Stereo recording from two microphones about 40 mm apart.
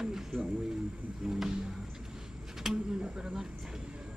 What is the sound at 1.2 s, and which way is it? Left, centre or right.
Vehicle, centre.